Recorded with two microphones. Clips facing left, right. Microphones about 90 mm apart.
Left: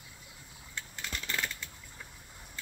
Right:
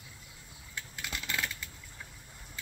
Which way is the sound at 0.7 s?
5° right (ahead or behind).